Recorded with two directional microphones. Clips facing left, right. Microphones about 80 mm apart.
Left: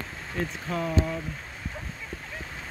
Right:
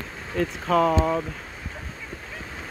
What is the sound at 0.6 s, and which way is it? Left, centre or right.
Speech, right.